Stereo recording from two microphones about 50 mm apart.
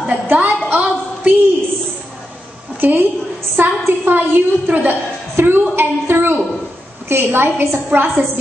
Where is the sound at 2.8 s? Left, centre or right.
Right.